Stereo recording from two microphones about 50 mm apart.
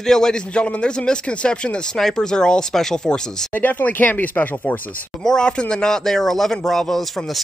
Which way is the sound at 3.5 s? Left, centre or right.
Left.